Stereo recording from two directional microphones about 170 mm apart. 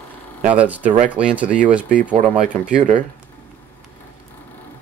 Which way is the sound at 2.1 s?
45° right (ahead or behind).